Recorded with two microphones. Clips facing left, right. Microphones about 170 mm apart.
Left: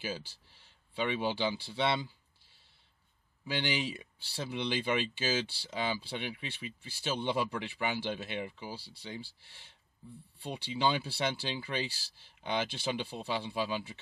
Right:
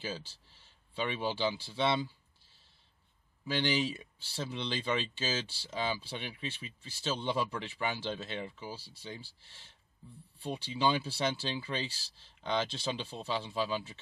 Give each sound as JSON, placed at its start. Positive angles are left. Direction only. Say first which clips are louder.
{"t": 0.0, "sound": "speech", "louder": "left 1 dB", "side_deg": 10}
{"t": 3.4, "sound": "speech", "louder": "right 2 dB", "side_deg": 15}